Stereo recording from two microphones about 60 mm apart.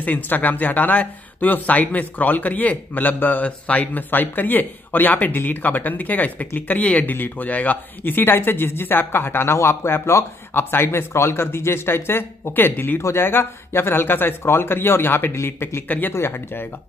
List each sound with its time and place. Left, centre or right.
0.0 s a man's voice: left